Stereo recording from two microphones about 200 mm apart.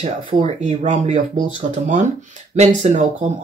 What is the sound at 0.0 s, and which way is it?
Speech, 30° right (ahead or behind).